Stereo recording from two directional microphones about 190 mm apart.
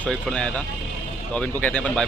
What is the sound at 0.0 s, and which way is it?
Speech, 5° left (ahead or behind).